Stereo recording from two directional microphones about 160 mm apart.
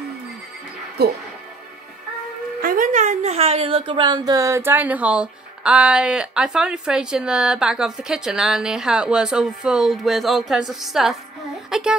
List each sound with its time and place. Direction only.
1.0 s speech: 90° right
2.6 s a woman's voice: 60° right (ahead or behind); by 12.0 s 5° right (ahead or behind)